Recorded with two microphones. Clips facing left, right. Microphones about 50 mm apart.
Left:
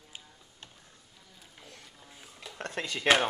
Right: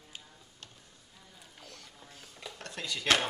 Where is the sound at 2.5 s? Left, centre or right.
Left.